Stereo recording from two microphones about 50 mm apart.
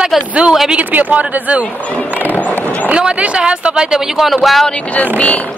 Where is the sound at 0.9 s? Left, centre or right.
Right.